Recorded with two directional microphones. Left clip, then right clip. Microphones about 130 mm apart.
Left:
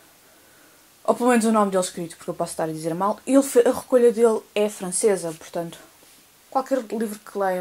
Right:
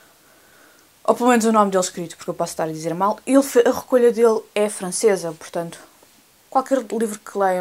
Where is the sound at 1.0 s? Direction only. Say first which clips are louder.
Right 3 dB; 15° right (ahead or behind).